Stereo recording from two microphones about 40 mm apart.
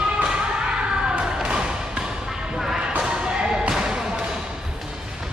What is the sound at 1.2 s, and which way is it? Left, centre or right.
Music, centre.